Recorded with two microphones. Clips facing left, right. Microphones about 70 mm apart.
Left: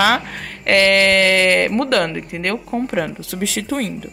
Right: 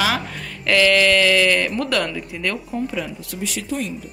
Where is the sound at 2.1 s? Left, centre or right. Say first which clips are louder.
Left 3 dB; left.